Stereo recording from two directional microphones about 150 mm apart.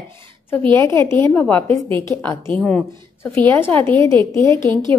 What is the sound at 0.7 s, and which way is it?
A woman's voice, 20° left (ahead or behind).